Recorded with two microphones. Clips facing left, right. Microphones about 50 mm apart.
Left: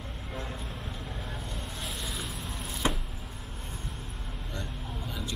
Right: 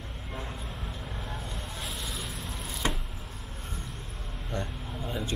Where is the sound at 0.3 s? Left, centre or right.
Centre.